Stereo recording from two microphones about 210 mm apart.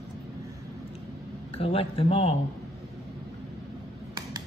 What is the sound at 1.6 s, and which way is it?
Speech, 25° left (ahead or behind).